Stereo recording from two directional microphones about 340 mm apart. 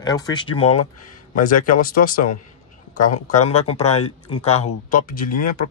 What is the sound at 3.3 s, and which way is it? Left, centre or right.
Speech, centre.